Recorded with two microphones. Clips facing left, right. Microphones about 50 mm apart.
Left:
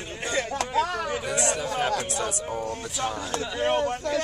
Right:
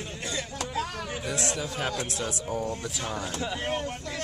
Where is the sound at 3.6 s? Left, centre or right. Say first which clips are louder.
Left 7 dB; left.